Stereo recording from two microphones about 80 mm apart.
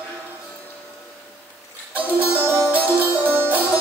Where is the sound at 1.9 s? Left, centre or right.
Right.